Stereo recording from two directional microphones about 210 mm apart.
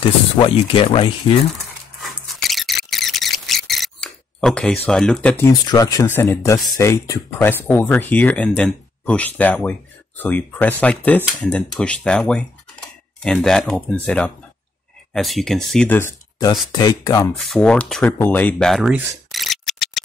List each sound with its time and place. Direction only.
0.7 s speech: 25° left (ahead or behind)
2.0 s a sound: centre (ahead or behind)
4.8 s speech: 5° left (ahead or behind)
5.4 s speech: 15° left (ahead or behind)
17.4 s speech: centre (ahead or behind)
18.0 s camera: 10° left (ahead or behind)